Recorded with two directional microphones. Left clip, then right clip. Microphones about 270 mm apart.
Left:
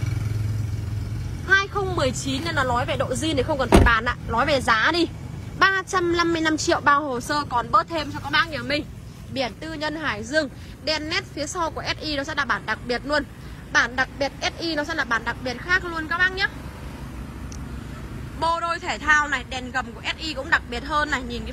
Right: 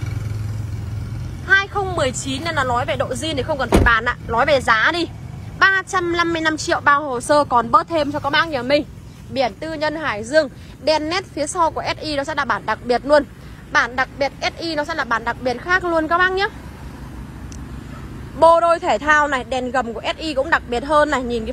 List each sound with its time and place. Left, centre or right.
1.5 s a woman's voice: centre
18.4 s a man's voice: centre